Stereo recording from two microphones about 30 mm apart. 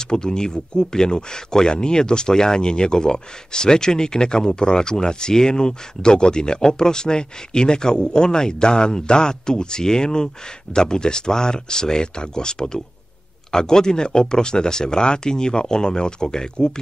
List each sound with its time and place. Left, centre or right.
0.0 s speech: left